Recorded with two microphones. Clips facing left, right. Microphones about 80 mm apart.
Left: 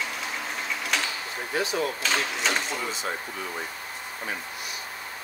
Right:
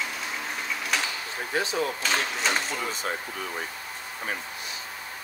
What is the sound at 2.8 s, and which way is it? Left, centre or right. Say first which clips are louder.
Speech: even; right.